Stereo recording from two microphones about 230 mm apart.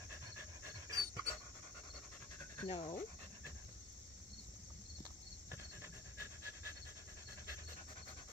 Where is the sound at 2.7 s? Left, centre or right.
Left.